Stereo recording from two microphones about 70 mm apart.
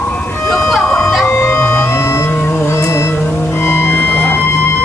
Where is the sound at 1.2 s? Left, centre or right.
Left.